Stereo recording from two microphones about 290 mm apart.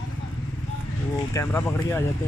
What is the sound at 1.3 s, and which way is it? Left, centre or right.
Speech, centre.